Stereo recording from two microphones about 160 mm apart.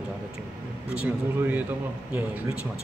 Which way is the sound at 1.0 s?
10° right (ahead or behind).